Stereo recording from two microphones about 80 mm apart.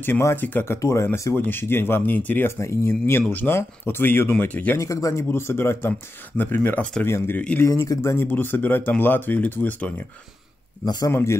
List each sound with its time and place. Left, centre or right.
0.2 s speech: left
0.7 s speech: left
1.3 s speech: left
2.6 s speech: left
4.7 s speech: left
6.8 s speech: centre
7.1 s speech: left
7.6 s speech: left; by 9.9 s centre
11.1 s speech: left